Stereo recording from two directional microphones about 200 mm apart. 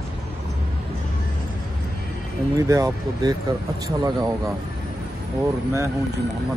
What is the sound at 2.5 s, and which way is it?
Speech, 15° right (ahead or behind).